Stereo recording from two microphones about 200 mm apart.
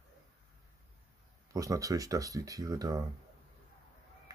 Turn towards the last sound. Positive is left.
turn(degrees=-20)  # may be behind; listen again after turning